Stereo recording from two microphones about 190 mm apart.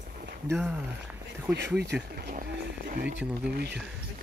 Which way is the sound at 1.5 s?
65° right (ahead or behind).